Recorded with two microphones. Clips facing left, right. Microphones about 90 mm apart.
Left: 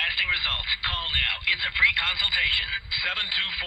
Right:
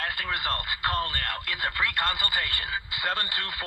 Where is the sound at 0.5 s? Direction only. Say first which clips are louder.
Right 5 dB; 30° right (ahead or behind).